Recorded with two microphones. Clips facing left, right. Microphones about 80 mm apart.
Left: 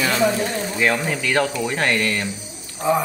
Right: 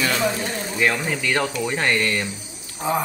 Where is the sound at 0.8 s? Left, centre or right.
Centre.